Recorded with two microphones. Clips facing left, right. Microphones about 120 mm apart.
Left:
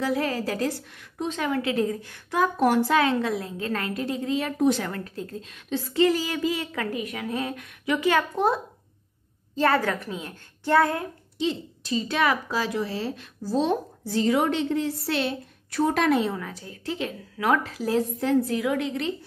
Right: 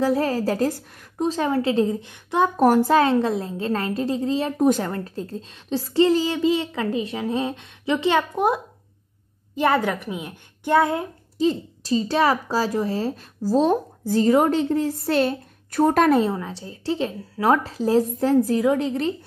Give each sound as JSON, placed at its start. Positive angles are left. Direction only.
{"t": 0.0, "sound": "speech", "side_deg": -35}
{"t": 2.5, "sound": "speech", "side_deg": -40}
{"t": 6.1, "sound": "a woman's voice", "side_deg": -25}
{"t": 9.6, "sound": "a child's voice", "side_deg": -15}
{"t": 11.3, "sound": "speech", "side_deg": -40}
{"t": 16.3, "sound": "speech", "side_deg": -30}